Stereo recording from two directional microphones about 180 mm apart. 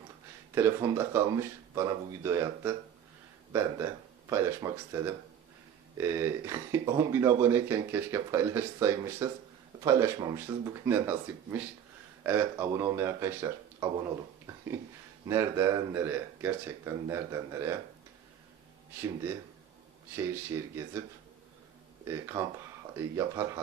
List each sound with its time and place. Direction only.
0.6 s speech: 15° right (ahead or behind)
4.3 s speech: 15° right (ahead or behind)
15.2 s speech: 15° right (ahead or behind)
20.2 s speech: 15° right (ahead or behind)
22.0 s speech: 15° right (ahead or behind)